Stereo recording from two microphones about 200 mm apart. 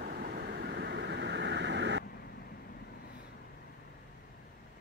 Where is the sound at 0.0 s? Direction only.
50° right (ahead or behind).